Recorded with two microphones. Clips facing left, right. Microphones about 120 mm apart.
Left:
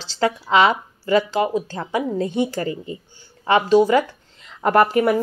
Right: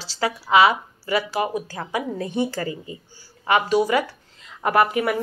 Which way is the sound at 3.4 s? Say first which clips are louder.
Left 4 dB; 35° left (ahead or behind).